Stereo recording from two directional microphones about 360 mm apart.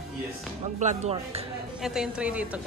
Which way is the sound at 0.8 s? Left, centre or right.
Centre.